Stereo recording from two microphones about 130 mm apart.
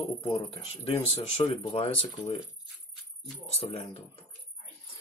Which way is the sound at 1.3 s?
50° left (ahead or behind).